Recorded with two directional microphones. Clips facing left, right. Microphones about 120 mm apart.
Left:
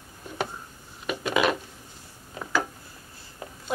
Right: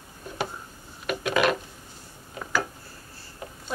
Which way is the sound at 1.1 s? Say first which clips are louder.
Right 1 dB; 15° left (ahead or behind).